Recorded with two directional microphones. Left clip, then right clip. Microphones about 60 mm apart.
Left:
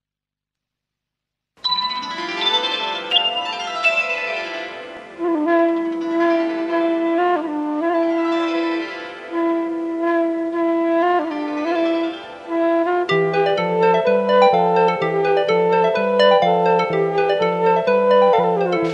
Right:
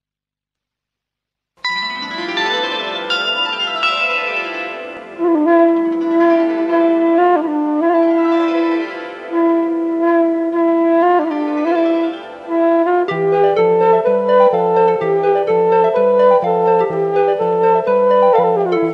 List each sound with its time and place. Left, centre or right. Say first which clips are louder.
1.8 s music: right 1 dB; centre